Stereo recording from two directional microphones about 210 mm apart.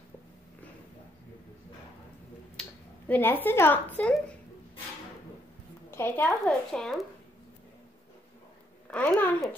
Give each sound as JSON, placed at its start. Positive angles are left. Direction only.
{"t": 2.6, "sound": "finger snapping", "side_deg": 5}
{"t": 3.1, "sound": "a woman's voice", "side_deg": 10}
{"t": 5.9, "sound": "a woman's voice", "side_deg": 10}
{"t": 8.9, "sound": "a woman's voice", "side_deg": 10}